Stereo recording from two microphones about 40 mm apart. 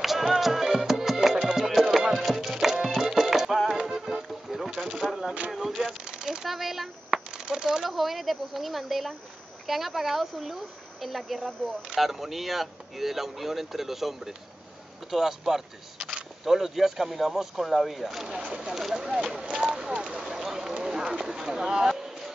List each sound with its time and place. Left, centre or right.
0.0 s music: centre
3.7 s rowboat: centre
4.8 s a sound: centre
5.5 s speech: centre
6.0 s a sound: centre
6.4 s speech: centre
7.2 s speech: centre
18.5 s speech: right
18.8 s speech: centre
19.5 s a sound: centre